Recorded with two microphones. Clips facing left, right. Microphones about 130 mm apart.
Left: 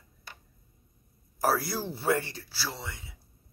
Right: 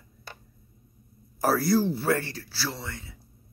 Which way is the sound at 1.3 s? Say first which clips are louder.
Right 5 dB; 10° left (ahead or behind).